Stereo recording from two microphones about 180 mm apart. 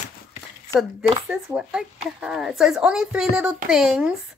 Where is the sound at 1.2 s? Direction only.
5° right (ahead or behind).